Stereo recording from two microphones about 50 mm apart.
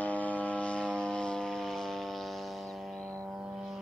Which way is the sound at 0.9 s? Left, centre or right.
Centre.